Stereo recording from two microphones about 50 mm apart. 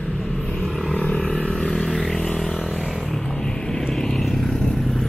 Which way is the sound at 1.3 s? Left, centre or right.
Centre.